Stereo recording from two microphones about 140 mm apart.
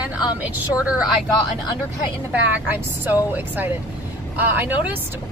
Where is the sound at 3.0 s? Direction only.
15° right (ahead or behind).